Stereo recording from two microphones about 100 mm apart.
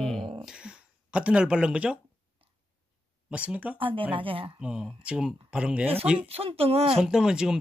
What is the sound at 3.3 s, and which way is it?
Speech, 15° right (ahead or behind).